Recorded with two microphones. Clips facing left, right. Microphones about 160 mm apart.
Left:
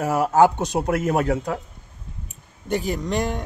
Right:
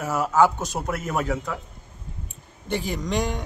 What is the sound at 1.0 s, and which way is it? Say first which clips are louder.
Speech: left 5 dB; 55° left (ahead or behind).